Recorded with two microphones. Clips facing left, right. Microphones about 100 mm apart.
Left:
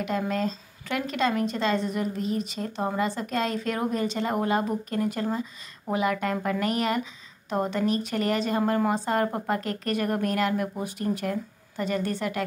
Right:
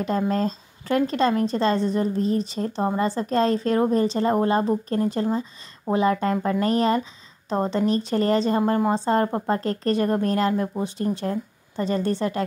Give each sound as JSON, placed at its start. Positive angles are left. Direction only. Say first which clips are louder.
{"t": 0.0, "sound": "speech", "louder": "right 4 dB", "side_deg": -35}